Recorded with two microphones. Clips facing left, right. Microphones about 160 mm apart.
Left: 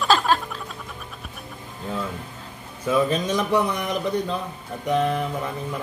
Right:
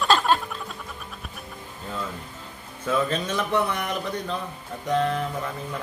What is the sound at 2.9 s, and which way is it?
Speech, 10° left (ahead or behind).